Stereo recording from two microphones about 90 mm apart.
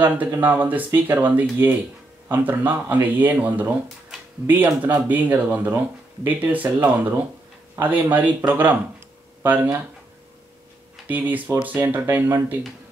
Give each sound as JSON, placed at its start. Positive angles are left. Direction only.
{"t": 0.4, "sound": "speech", "side_deg": -20}
{"t": 11.1, "sound": "speech", "side_deg": -20}